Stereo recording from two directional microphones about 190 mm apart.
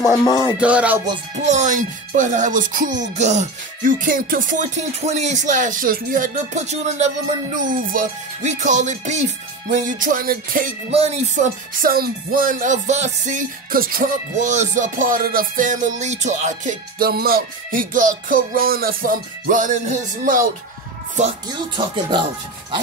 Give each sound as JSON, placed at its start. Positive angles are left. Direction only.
{"t": 0.2, "sound": "music", "side_deg": 20}
{"t": 0.6, "sound": "music", "side_deg": -5}
{"t": 1.5, "sound": "music", "side_deg": -40}
{"t": 9.7, "sound": "speech", "side_deg": -45}
{"t": 10.9, "sound": "speech", "side_deg": -35}